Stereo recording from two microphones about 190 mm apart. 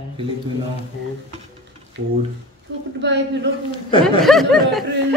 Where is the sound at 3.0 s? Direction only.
65° right (ahead or behind).